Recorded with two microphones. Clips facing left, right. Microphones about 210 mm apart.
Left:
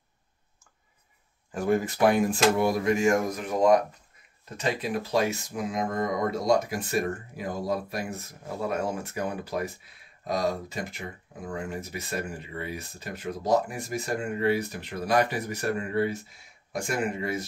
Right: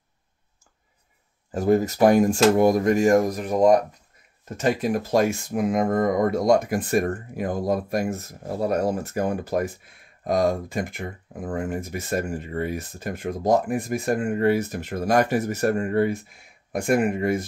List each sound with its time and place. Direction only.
1.5 s speech: 40° right (ahead or behind)